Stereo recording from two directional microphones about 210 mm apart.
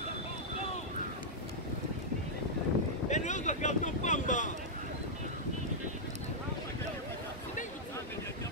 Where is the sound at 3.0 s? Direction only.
35° left (ahead or behind).